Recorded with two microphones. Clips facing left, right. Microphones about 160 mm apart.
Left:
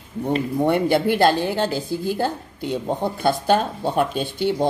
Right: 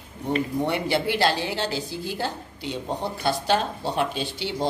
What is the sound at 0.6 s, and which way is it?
A woman's voice, 50° left (ahead or behind).